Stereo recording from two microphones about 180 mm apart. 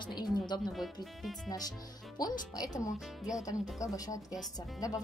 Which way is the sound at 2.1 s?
20° left (ahead or behind).